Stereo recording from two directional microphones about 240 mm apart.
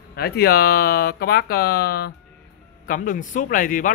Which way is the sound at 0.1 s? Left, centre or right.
Left.